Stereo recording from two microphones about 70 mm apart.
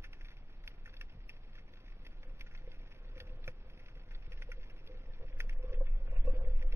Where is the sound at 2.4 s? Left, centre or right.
Right.